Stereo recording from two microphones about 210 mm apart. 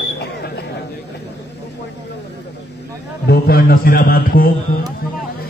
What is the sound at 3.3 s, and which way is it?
A man's voice, 45° left (ahead or behind).